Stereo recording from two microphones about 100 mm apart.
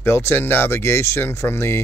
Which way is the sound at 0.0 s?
25° left (ahead or behind).